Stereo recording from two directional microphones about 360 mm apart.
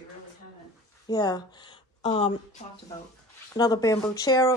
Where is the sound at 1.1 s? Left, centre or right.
Centre.